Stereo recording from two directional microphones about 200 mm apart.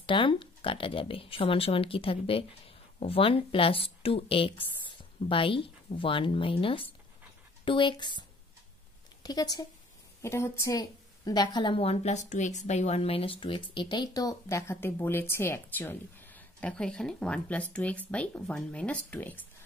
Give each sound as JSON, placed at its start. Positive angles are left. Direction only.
{"t": 0.0, "sound": "a woman's voice", "side_deg": 25}